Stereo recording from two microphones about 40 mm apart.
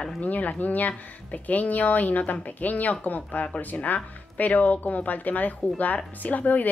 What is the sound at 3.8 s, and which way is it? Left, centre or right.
Speech, left.